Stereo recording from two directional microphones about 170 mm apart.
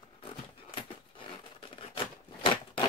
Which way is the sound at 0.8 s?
30° left (ahead or behind).